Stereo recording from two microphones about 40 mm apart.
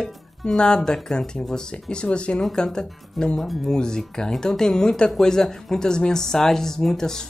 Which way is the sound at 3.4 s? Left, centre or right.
Centre.